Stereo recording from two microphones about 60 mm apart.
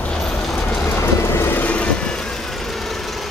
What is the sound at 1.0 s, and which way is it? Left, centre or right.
Vehicle, left.